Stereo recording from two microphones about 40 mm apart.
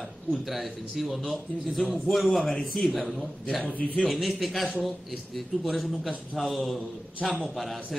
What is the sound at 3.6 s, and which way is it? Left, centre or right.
Speech, left.